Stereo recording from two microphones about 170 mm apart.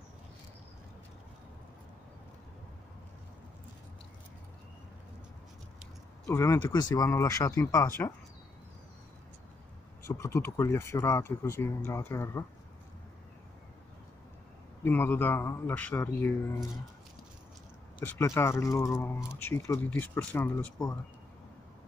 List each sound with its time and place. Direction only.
6.2 s speech: 15° left (ahead or behind)
10.0 s speech: 15° left (ahead or behind)
14.8 s speech: 10° left (ahead or behind)
18.0 s speech: 15° left (ahead or behind)